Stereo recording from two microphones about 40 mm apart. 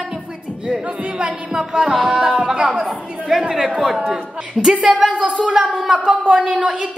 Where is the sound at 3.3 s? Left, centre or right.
Centre.